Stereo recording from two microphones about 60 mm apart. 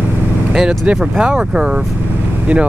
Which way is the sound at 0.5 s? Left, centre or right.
Centre.